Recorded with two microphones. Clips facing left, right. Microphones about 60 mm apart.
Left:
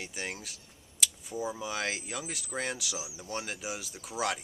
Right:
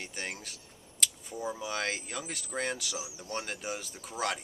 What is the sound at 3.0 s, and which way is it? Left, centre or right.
Speech, centre.